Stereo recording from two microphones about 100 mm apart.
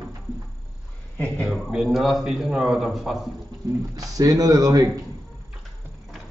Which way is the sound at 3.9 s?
35° right (ahead or behind).